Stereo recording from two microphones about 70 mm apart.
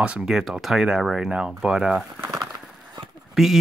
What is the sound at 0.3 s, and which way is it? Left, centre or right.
Speech, centre.